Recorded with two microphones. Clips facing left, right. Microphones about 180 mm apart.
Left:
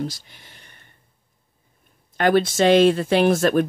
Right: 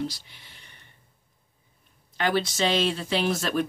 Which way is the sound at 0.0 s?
45° left (ahead or behind).